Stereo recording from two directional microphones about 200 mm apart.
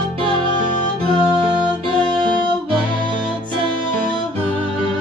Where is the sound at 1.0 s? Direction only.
25° right (ahead or behind).